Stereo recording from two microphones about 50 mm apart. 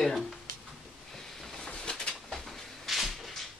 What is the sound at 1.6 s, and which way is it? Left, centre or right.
Bird, centre.